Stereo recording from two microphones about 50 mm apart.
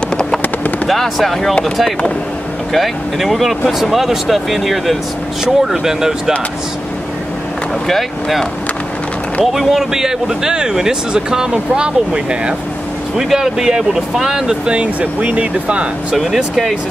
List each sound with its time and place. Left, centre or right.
0.8 s speech: centre
7.9 s speech: centre
13.2 s speech: centre
14.7 s speech: right
16.2 s speech: centre